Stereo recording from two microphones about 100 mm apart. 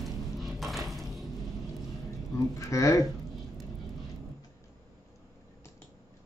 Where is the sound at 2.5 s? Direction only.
30° left (ahead or behind).